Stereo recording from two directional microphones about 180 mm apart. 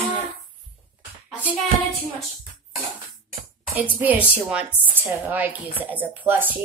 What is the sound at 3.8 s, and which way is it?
A woman's voice, 10° right (ahead or behind).